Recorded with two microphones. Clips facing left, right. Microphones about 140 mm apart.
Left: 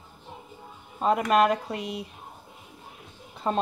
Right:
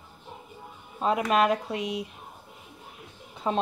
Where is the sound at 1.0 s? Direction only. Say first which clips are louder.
Left 2 dB; centre (ahead or behind).